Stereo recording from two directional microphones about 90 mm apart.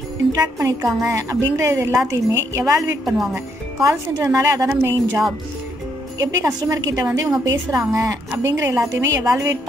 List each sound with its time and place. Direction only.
0.4 s a woman's voice: 40° right (ahead or behind)
3.1 s a woman's voice: centre (ahead or behind)
3.3 s a woman's voice: 35° right (ahead or behind)
4.6 s speech: 30° right (ahead or behind)
6.2 s a woman's voice: 40° right (ahead or behind)